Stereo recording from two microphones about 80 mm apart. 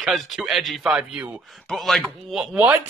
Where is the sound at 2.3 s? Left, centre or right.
Centre.